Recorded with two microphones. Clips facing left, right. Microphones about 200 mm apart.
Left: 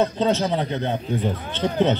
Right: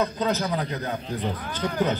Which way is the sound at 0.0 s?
30° left (ahead or behind).